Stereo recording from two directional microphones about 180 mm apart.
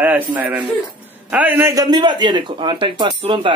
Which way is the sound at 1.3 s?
10° right (ahead or behind).